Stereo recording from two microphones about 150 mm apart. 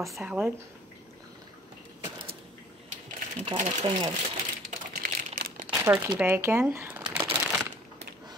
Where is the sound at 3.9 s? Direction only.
35° right (ahead or behind).